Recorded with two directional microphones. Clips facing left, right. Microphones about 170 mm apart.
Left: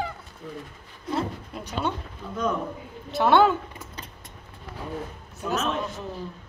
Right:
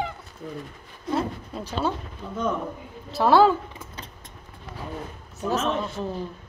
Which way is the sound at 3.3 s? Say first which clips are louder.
Right 2 dB; 30° right (ahead or behind).